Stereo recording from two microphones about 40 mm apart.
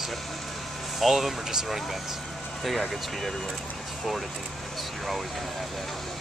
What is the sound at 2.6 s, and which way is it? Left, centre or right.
Speech, centre.